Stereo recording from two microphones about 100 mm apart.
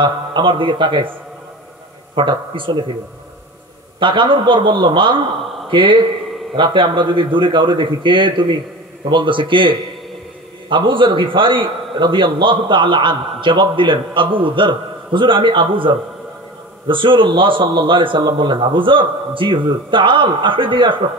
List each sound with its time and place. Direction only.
0.0 s a man's voice: 50° right (ahead or behind)
2.1 s a man's voice: 55° right (ahead or behind)
4.0 s a man's voice: 55° right (ahead or behind)